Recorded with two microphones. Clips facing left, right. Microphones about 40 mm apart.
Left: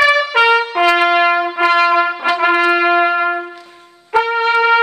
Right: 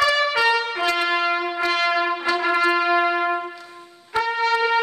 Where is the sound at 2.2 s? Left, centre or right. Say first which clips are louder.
Left 6 dB; left.